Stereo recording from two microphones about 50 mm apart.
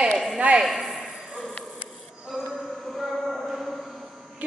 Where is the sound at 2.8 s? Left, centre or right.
Centre.